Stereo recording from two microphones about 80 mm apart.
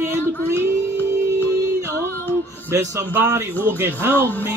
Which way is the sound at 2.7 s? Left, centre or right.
Right.